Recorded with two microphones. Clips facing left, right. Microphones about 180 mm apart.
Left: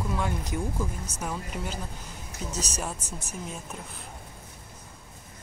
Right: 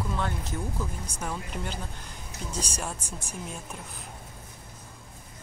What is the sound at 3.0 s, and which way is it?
Speech, 10° right (ahead or behind).